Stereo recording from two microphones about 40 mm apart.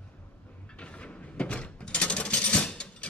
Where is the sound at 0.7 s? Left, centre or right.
Left.